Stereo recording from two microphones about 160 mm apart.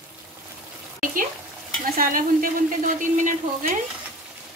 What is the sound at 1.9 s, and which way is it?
Speech, 60° right (ahead or behind).